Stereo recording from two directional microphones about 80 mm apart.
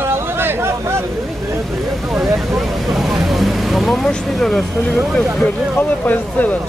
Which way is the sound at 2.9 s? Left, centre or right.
Centre.